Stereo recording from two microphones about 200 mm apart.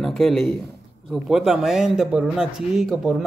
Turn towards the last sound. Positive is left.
turn(degrees=0)  # may be behind; listen again after turning